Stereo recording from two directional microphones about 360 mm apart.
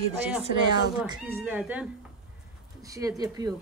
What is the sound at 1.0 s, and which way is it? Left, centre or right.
Speech, centre.